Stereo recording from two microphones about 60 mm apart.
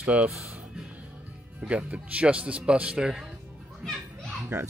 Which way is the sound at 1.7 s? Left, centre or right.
Centre.